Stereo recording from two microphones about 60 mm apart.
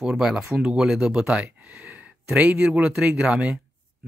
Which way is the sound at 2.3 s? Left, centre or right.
Right.